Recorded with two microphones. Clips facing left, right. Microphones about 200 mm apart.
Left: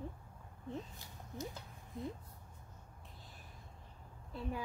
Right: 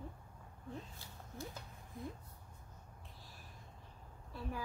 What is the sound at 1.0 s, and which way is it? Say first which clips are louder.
Speech: left 3 dB; 15° left (ahead or behind).